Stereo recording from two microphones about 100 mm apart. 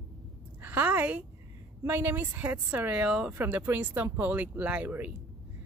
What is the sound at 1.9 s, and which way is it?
A woman's voice, 20° right (ahead or behind).